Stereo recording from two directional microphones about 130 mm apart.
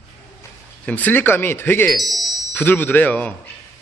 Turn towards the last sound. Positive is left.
turn(degrees=10)  # may be behind; listen again after turning